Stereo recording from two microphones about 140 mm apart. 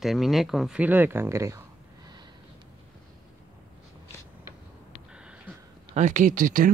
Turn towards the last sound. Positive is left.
turn(degrees=-80)